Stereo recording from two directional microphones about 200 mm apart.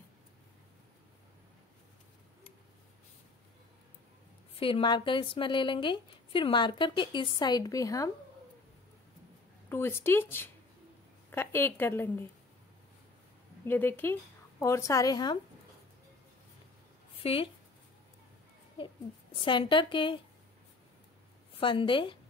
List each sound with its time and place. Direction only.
4.6 s a woman's voice: 25° left (ahead or behind)
9.7 s speech: 10° left (ahead or behind)
13.7 s speech: 10° left (ahead or behind)
17.2 s speech: 25° left (ahead or behind)
19.4 s a woman's voice: 25° left (ahead or behind)
21.5 s a woman's voice: 25° left (ahead or behind)